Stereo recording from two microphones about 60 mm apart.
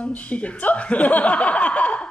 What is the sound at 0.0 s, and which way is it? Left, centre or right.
Speech, left.